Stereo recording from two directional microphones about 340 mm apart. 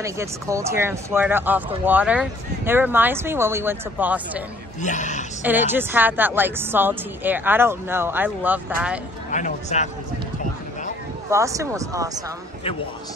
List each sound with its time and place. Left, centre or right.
0.0 s speech: centre
4.8 s speech: left
5.4 s a woman's voice: centre
9.3 s speech: left
11.2 s speech: centre